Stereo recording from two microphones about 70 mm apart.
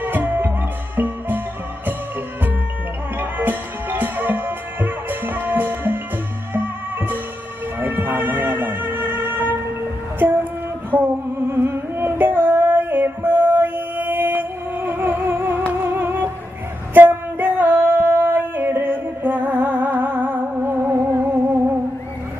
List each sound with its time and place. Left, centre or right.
0.0 s music: right
3.2 s music: right
10.9 s music: centre
11.5 s music: right
16.9 s singing: right